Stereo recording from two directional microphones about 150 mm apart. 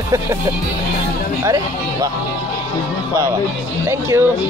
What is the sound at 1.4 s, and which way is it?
Speech, 25° right (ahead or behind).